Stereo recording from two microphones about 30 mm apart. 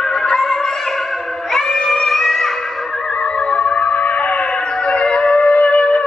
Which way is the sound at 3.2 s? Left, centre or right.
Left.